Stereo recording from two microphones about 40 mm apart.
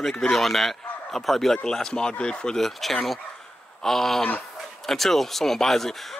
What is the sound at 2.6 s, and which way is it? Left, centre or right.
Speech, centre.